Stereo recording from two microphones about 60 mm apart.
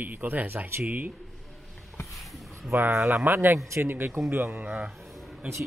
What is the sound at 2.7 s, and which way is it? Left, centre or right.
Speech, right.